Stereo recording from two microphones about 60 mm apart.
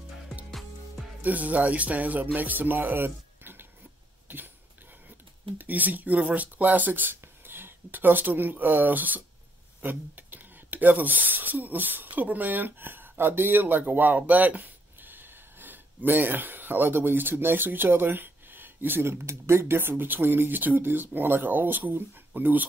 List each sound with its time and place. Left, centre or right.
0.5 s music: centre
1.2 s speech: right
5.6 s speech: right